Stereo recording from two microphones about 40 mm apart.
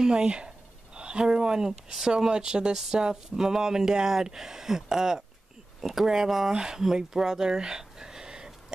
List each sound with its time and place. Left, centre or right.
0.0 s speech: right